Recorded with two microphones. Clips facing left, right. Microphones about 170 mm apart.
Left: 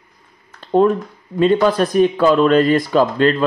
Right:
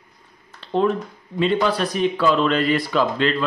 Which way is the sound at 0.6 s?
45° left (ahead or behind).